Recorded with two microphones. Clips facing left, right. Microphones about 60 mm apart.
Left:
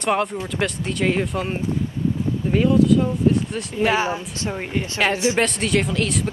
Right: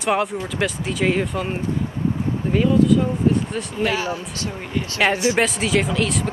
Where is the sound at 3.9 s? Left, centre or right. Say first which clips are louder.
Left 3 dB; left.